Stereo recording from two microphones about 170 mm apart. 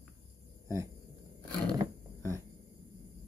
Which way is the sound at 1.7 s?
20° right (ahead or behind).